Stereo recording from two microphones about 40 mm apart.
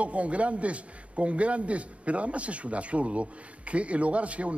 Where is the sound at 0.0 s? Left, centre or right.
Right.